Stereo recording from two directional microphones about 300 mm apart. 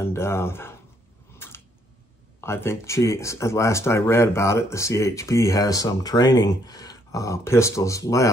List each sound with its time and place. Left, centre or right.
0.0 s speech: centre
1.4 s tick-tock: centre
2.4 s speech: centre